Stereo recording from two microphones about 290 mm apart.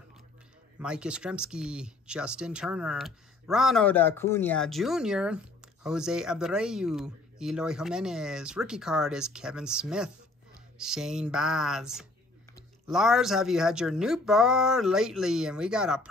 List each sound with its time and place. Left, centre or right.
0.7 s speech: centre